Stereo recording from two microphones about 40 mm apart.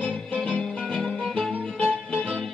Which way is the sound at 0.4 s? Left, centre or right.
Centre.